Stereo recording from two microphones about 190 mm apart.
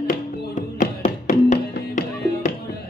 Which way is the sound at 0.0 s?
45° left (ahead or behind).